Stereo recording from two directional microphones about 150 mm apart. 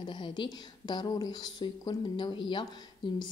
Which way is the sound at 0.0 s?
30° left (ahead or behind).